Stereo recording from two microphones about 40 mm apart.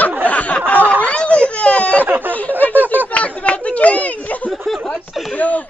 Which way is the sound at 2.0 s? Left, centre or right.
Right.